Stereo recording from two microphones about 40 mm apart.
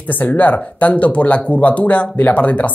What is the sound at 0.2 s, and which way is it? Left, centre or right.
Speech, left.